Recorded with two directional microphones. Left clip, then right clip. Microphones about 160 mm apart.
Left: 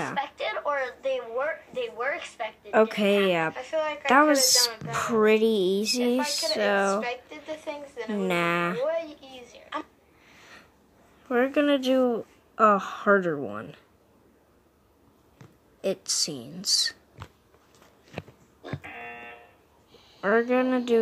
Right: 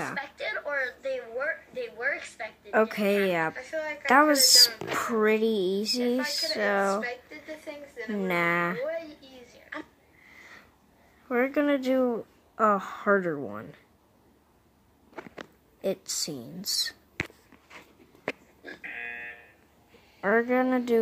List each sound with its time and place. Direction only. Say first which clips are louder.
0.1 s a sound: left 3 dB; 10° right (ahead or behind)
2.7 s speech: left 3 dB; 10° left (ahead or behind)
11.2 s speech: left 2 dB; centre (ahead or behind)
15.8 s a woman's voice: left 3 dB; 10° right (ahead or behind)
18.8 s buzzer: right 8 dB; 20° left (ahead or behind)
20.2 s a woman's voice: left 1 dB; 10° right (ahead or behind)